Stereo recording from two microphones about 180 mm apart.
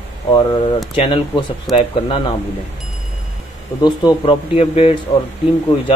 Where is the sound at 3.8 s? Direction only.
25° left (ahead or behind).